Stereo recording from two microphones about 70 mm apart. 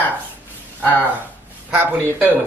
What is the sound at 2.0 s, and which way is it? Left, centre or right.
Speech, right.